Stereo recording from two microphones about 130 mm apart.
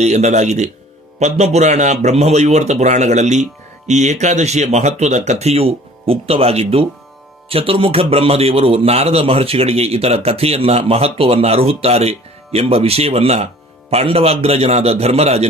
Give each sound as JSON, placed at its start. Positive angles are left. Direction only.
{"t": 0.0, "sound": "a man's voice", "side_deg": -60}